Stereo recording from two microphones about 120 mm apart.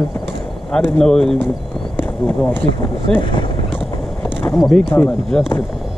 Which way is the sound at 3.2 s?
45° left (ahead or behind).